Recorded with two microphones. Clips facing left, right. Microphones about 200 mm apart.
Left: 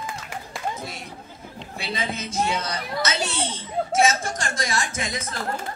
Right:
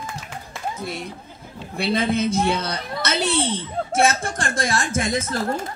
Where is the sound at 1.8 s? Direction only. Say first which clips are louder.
Right 10 dB; 55° right (ahead or behind).